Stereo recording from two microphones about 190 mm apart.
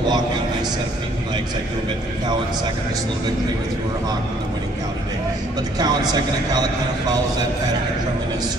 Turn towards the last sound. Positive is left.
turn(degrees=-20)  # may be behind; listen again after turning